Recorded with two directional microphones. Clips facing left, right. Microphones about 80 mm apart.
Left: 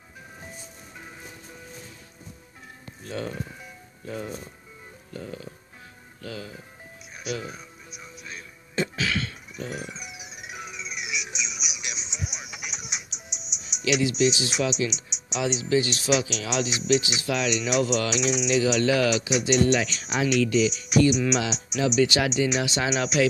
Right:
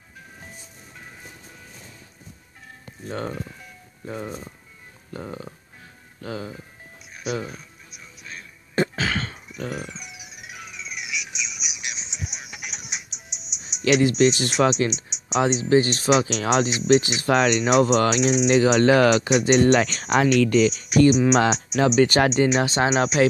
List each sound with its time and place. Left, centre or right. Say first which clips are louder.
3.1 s speech: right 2 dB; right
8.7 s cough: right 4 dB; right
9.6 s music: right 3 dB; right
9.8 s music: even; centre
10.3 s music: left 2 dB; left
12.1 s music: even; centre
13.8 s speech: right 5 dB; right
20.8 s music: right 4 dB; right
21.3 s speech: right 7 dB; right